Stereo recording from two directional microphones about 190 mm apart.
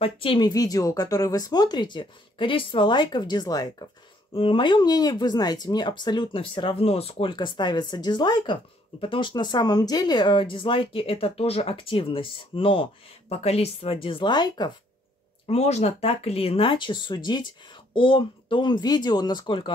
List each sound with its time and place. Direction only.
0.0 s speech: 25° left (ahead or behind)
15.4 s speech: 35° left (ahead or behind)